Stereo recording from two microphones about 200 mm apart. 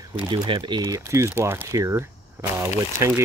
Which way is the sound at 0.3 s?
25° right (ahead or behind).